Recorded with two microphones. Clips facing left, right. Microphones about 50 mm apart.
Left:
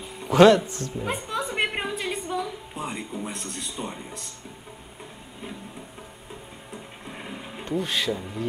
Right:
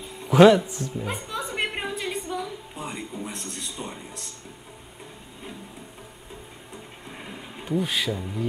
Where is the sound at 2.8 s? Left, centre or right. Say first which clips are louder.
Left 2 dB; centre.